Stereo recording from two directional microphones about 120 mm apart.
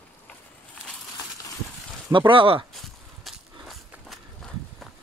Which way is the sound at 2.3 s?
45° right (ahead or behind).